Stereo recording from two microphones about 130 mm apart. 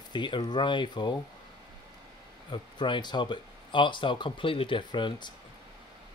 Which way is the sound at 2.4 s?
35° left (ahead or behind).